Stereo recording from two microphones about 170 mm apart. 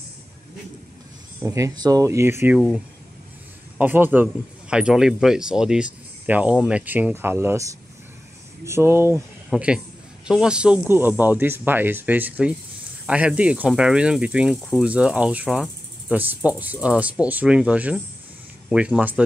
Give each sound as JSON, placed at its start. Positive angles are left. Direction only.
{"t": 1.4, "sound": "speech", "side_deg": -20}
{"t": 2.4, "sound": "speech", "side_deg": -5}
{"t": 14.9, "sound": "speech", "side_deg": -5}